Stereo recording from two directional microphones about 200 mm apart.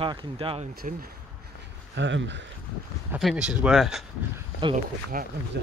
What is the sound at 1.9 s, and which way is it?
Speech, 65° right (ahead or behind).